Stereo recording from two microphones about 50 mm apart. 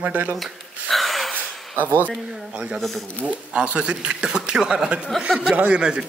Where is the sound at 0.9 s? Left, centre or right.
Centre.